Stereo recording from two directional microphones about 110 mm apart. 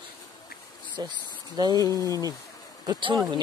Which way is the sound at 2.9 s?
50° right (ahead or behind).